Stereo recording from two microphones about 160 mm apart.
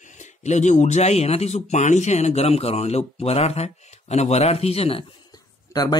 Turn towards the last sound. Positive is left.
turn(degrees=25)  # may be behind; listen again after turning